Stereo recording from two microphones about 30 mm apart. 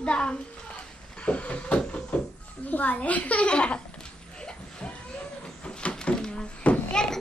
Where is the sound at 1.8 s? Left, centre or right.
Left.